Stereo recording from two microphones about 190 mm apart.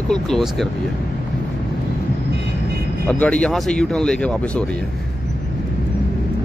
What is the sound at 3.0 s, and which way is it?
Speech, 5° left (ahead or behind).